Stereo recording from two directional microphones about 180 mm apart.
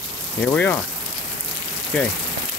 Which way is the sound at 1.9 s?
5° left (ahead or behind).